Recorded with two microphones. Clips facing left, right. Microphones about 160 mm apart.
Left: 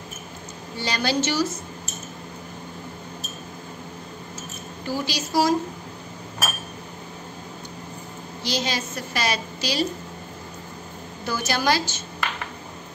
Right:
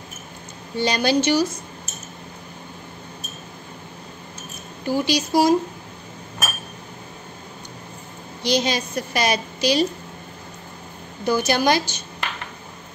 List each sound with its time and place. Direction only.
0.7 s a woman's voice: 15° right (ahead or behind)
4.8 s a woman's voice: 15° right (ahead or behind)
8.5 s a woman's voice: 15° right (ahead or behind)
11.2 s a woman's voice: 15° right (ahead or behind)